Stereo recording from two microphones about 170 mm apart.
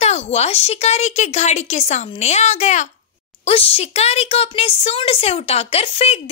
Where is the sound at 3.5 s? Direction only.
35° left (ahead or behind).